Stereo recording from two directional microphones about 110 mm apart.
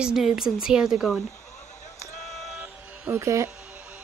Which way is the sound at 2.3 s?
Centre (ahead or behind).